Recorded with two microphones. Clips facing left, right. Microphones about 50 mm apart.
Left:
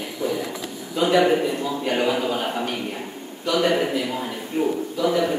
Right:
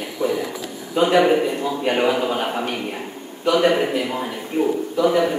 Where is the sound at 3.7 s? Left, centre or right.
Centre.